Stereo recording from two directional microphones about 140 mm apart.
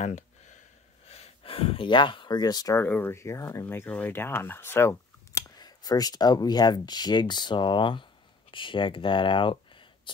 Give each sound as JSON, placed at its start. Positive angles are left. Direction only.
{"t": 1.0, "sound": "speech", "side_deg": 45}
{"t": 2.8, "sound": "speech", "side_deg": 15}
{"t": 5.6, "sound": "speech", "side_deg": 30}